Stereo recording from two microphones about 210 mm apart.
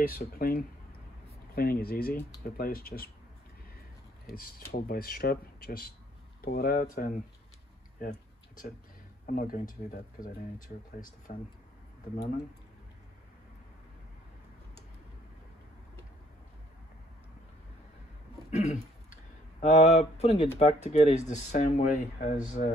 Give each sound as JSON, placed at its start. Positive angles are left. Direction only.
{"t": 0.0, "sound": "speech", "side_deg": 45}
{"t": 4.3, "sound": "speech", "side_deg": 45}
{"t": 8.0, "sound": "a sound", "side_deg": 40}
{"t": 9.2, "sound": "speech", "side_deg": 40}
{"t": 18.5, "sound": "a sound", "side_deg": 35}
{"t": 19.6, "sound": "speech", "side_deg": 30}